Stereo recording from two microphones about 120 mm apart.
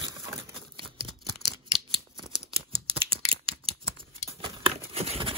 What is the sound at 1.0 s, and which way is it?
Scissors, 40° right (ahead or behind).